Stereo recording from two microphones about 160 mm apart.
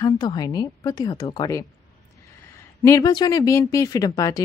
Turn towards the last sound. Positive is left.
turn(degrees=20)  # may be behind; listen again after turning